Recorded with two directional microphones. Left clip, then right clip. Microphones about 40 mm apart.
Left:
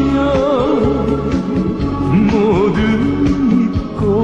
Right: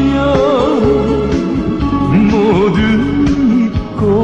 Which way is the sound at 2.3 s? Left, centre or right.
Left.